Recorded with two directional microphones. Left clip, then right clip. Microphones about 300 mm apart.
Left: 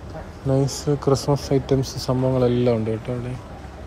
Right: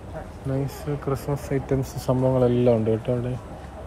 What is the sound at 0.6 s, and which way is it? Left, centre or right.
Speech, left.